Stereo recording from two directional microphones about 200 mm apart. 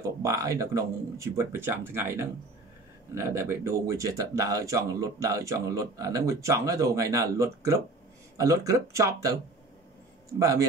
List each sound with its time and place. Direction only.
0.0 s speech: 15° right (ahead or behind)
10.4 s speech: 15° right (ahead or behind)